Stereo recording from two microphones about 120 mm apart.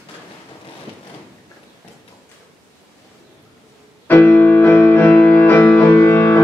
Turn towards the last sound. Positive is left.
turn(degrees=15)  # may be behind; listen again after turning